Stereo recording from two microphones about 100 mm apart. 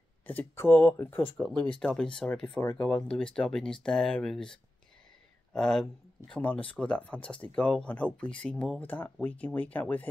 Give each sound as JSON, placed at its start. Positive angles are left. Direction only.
{"t": 0.3, "sound": "speech", "side_deg": 20}